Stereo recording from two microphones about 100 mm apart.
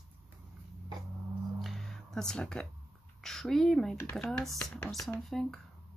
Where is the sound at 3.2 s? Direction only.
5° left (ahead or behind).